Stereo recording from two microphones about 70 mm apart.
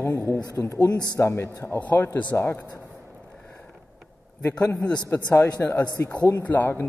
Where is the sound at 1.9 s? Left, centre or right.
Left.